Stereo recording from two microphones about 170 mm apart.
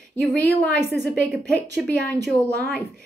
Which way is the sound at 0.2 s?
5° left (ahead or behind).